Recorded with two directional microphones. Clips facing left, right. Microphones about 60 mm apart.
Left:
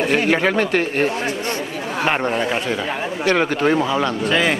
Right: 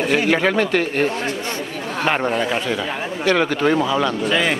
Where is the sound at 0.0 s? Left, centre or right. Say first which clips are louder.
Even; centre; by 1.1 s left.